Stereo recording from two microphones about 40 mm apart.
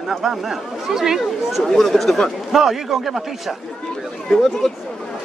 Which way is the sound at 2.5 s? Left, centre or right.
Centre.